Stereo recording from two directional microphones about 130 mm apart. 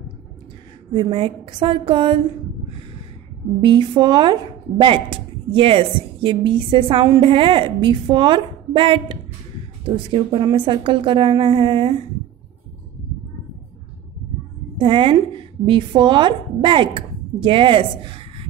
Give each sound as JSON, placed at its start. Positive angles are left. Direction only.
{"t": 0.9, "sound": "a woman's voice", "side_deg": -40}
{"t": 3.6, "sound": "a woman's voice", "side_deg": -35}
{"t": 14.8, "sound": "a woman's voice", "side_deg": -40}